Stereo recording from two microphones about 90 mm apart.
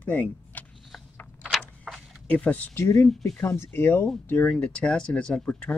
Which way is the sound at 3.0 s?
10° left (ahead or behind).